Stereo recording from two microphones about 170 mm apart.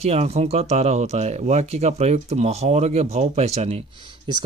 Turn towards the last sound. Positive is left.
turn(degrees=-30)  # may be behind; listen again after turning